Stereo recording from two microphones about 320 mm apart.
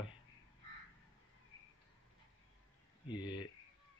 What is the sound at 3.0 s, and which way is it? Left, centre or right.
Speech, centre.